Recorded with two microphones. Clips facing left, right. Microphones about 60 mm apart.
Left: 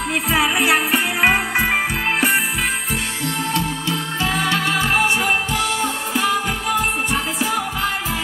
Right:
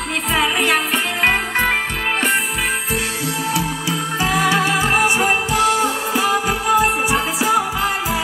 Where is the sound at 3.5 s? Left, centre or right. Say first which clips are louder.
Right 1 dB; centre.